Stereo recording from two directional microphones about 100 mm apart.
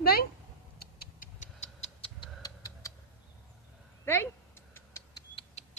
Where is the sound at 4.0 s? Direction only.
25° left (ahead or behind).